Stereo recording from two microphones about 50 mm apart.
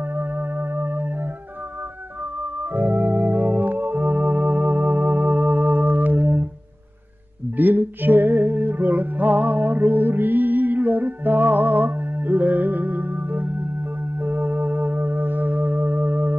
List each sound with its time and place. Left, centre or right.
0.0 s organ: right
2.4 s organ: right
7.5 s music: right